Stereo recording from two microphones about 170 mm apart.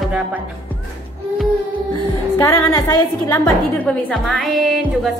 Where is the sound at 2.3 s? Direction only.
20° left (ahead or behind).